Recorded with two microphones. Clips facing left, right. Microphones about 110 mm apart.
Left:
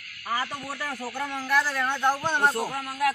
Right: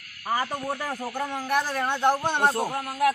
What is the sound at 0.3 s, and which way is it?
Speech, 30° right (ahead or behind).